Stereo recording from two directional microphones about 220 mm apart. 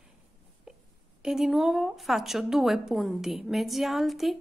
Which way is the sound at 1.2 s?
5° right (ahead or behind).